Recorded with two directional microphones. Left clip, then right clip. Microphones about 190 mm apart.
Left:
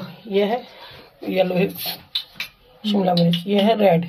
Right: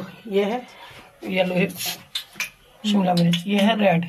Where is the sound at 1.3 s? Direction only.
30° left (ahead or behind).